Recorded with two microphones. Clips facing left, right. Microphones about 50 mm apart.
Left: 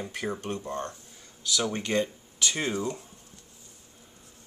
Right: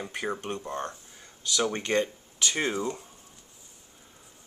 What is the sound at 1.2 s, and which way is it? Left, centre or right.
Speech, right.